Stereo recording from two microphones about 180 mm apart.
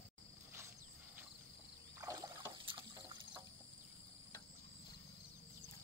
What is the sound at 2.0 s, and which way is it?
Trickle, 20° right (ahead or behind).